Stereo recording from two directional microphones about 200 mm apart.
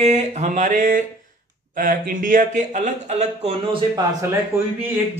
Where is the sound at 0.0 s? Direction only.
35° right (ahead or behind).